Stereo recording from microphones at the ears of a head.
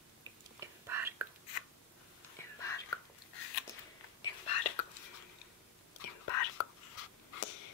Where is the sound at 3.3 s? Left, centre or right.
Left.